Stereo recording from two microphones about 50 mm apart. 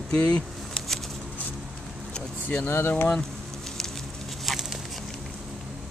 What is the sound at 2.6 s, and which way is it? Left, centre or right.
Speech, left.